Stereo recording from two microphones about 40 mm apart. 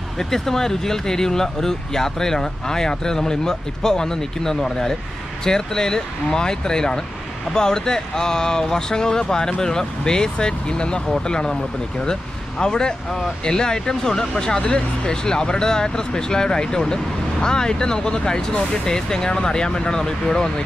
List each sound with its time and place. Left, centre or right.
0.2 s speech: centre